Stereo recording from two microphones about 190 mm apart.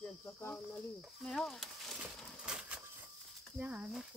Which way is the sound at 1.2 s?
Centre (ahead or behind).